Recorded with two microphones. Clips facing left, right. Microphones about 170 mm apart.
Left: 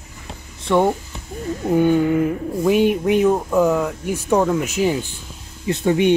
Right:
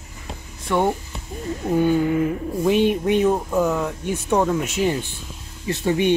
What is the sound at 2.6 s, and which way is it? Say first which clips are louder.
Speech: left 2 dB; 10° left (ahead or behind).